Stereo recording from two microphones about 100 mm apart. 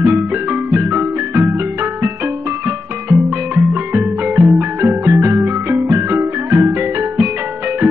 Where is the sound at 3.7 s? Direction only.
15° right (ahead or behind).